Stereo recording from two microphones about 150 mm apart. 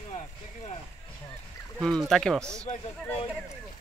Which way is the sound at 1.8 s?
5° left (ahead or behind).